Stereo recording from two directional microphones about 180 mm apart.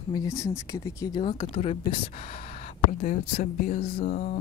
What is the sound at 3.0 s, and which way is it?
Speech, 45° left (ahead or behind).